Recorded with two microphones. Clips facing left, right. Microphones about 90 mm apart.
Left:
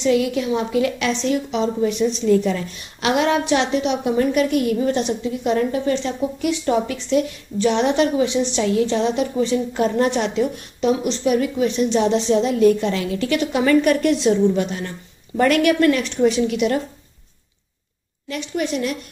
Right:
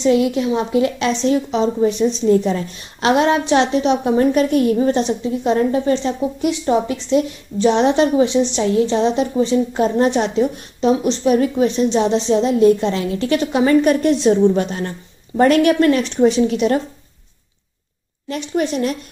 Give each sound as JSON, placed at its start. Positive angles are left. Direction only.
{"t": 0.0, "sound": "a woman's voice", "side_deg": -30}
{"t": 18.3, "sound": "a woman's voice", "side_deg": -35}